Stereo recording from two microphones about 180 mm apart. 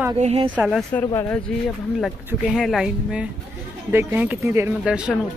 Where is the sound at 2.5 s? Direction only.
Centre (ahead or behind).